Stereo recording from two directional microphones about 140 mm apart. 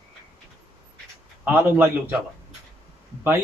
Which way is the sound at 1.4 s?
15° right (ahead or behind).